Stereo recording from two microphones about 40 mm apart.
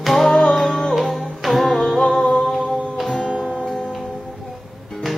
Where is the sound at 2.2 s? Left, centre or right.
Left.